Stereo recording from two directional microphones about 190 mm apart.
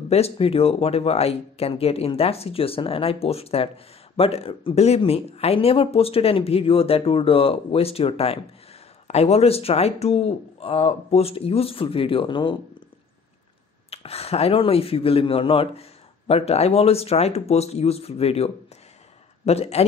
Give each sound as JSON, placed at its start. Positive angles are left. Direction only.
{"t": 0.1, "sound": "speech", "side_deg": 30}
{"t": 13.8, "sound": "speech", "side_deg": 30}